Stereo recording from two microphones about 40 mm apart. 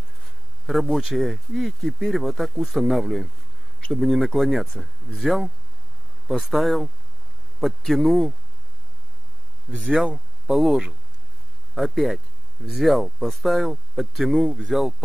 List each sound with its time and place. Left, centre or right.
0.2 s a sound: centre
1.0 s speech: centre
6.5 s speech: centre
9.7 s speech: right
10.1 s speech: centre
11.7 s speech: centre